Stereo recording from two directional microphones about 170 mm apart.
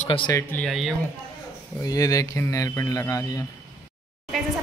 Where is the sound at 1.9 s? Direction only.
20° left (ahead or behind).